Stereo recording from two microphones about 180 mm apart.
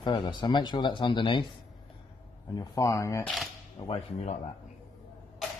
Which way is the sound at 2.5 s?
20° left (ahead or behind).